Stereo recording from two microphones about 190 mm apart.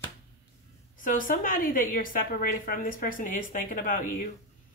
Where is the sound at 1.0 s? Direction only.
45° left (ahead or behind).